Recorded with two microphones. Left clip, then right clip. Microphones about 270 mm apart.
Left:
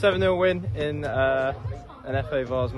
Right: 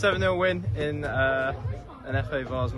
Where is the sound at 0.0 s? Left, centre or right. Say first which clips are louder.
Left 3 dB; left.